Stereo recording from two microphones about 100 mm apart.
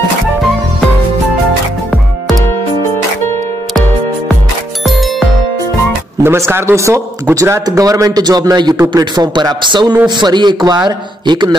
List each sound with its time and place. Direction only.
4.8 s music: centre (ahead or behind)
6.2 s a man's voice: 25° right (ahead or behind); by 11.5 s 50° right (ahead or behind)